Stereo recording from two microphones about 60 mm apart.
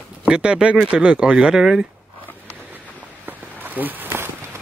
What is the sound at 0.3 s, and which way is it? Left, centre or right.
Speech, centre.